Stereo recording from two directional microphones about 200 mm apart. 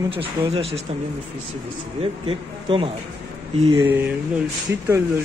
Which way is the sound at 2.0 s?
25° right (ahead or behind).